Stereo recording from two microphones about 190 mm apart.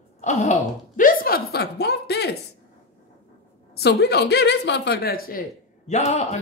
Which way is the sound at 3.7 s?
60° left (ahead or behind).